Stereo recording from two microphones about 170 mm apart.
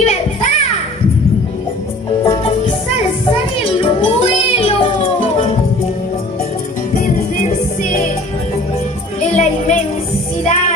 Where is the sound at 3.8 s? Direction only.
35° left (ahead or behind).